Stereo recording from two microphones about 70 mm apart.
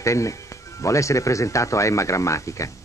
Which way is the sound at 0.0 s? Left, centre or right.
Left.